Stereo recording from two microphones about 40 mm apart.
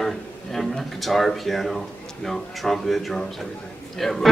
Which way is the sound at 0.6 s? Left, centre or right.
Centre.